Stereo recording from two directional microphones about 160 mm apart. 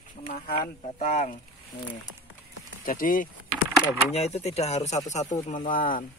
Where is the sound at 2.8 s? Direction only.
60° left (ahead or behind).